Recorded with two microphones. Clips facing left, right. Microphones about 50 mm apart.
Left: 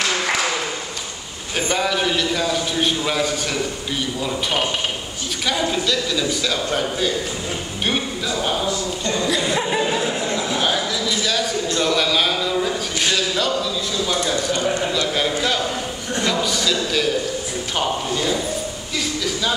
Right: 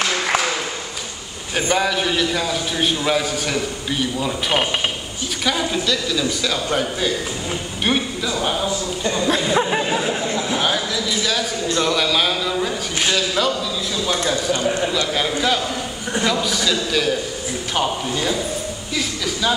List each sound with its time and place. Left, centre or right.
1.7 s a man's voice: centre
5.4 s a man's voice: centre
9.5 s a sound: centre
10.5 s a man's voice: centre
14.2 s a man's voice: centre
14.6 s a man's voice: centre